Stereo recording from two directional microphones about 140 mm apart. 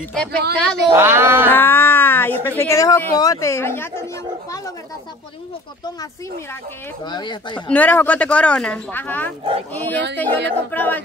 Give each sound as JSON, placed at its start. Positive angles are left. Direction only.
{"t": 0.1, "sound": "speech", "side_deg": 5}
{"t": 0.9, "sound": "speech", "side_deg": -15}
{"t": 1.5, "sound": "speech", "side_deg": 15}
{"t": 7.1, "sound": "speech", "side_deg": 30}
{"t": 7.6, "sound": "speech", "side_deg": 10}